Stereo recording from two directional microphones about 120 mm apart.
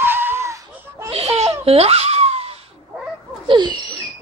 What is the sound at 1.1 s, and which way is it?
Laughter, 60° right (ahead or behind).